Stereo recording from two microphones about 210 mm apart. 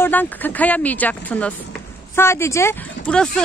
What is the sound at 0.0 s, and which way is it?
Speech, 10° left (ahead or behind).